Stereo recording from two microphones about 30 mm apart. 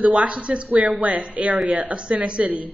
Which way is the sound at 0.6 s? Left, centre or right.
Right.